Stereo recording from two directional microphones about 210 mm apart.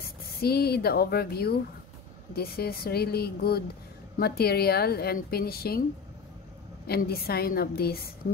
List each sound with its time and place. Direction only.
0.0 s a woman's voice: 45° left (ahead or behind)
6.9 s a woman's voice: 45° left (ahead or behind)